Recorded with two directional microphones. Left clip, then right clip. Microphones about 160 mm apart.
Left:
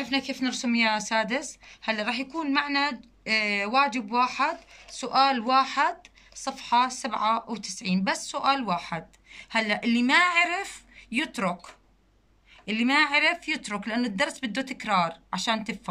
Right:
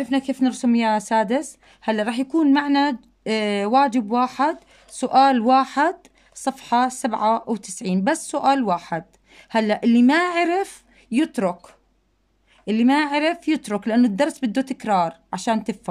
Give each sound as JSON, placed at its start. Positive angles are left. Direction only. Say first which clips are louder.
{"t": 0.0, "sound": "speech", "louder": "right 6 dB", "side_deg": -50}